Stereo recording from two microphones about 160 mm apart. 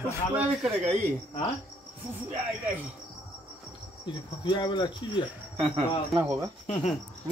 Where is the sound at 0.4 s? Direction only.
10° right (ahead or behind).